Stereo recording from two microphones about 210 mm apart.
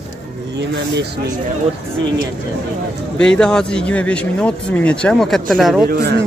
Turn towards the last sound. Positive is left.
turn(degrees=-45)  # may be behind; listen again after turning